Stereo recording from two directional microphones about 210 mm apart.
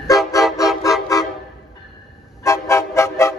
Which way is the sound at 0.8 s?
15° left (ahead or behind).